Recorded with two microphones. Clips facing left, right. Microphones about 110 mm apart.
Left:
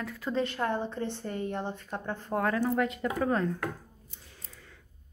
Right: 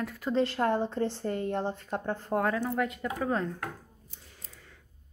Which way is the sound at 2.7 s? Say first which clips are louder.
Left 2 dB; centre (ahead or behind).